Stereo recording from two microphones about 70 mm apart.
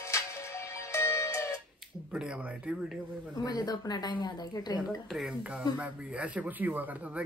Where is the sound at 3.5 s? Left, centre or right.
Left.